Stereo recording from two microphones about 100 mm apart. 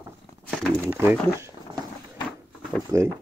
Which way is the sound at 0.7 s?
25° right (ahead or behind).